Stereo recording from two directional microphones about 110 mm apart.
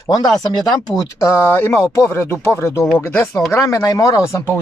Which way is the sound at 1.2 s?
25° left (ahead or behind).